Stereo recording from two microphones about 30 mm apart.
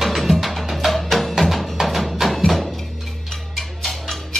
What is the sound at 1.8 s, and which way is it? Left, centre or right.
Music, centre.